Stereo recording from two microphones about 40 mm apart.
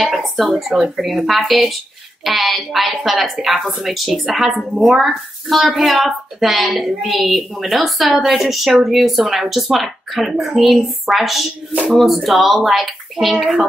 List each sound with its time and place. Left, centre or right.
0.4 s speech: centre